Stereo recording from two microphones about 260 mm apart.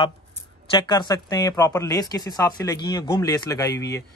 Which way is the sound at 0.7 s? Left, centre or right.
Centre.